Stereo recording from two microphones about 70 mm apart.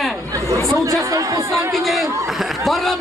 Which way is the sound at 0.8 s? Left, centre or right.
Right.